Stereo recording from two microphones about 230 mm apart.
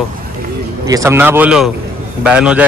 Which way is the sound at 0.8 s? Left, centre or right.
Centre.